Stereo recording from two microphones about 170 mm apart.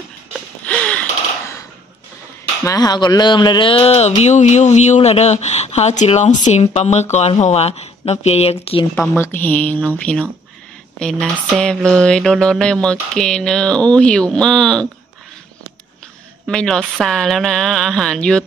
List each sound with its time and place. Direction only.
0.7 s a sound: 5° left (ahead or behind)
2.6 s speech: 20° left (ahead or behind)
8.9 s a woman's voice: 10° left (ahead or behind)
11.0 s mantra: 5° left (ahead or behind)
16.4 s mantra: 5° left (ahead or behind)